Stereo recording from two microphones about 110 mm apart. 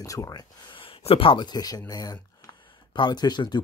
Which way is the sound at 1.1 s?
55° left (ahead or behind).